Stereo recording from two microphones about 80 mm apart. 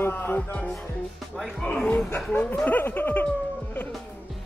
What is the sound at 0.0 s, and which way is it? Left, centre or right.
Music, left.